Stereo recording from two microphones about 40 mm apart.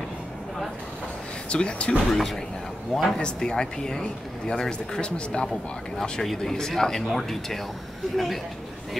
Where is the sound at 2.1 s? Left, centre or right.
Centre.